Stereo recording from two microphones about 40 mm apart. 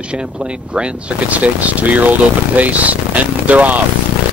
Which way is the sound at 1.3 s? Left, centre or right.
Right.